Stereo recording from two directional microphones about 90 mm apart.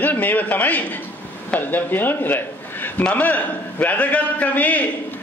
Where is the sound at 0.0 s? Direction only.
20° left (ahead or behind).